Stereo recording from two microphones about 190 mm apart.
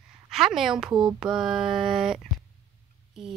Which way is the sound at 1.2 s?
5° right (ahead or behind).